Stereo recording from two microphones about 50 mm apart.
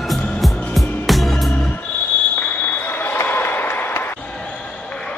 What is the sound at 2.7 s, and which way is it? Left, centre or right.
Basketball bounce, left.